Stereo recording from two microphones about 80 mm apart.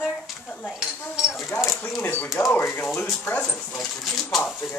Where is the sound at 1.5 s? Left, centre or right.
Left.